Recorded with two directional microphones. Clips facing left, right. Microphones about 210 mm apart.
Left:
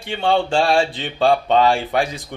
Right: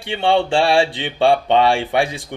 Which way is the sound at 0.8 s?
70° right (ahead or behind).